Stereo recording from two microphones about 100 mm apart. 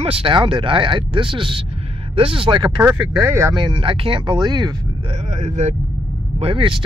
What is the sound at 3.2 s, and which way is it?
Speech, 25° right (ahead or behind).